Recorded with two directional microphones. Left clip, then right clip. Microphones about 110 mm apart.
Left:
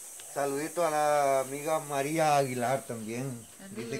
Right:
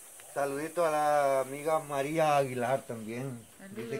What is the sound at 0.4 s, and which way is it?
Speech, 40° right (ahead or behind).